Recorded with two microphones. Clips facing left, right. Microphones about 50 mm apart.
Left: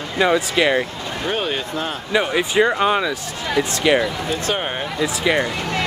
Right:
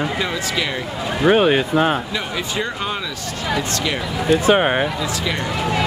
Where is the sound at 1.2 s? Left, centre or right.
Right.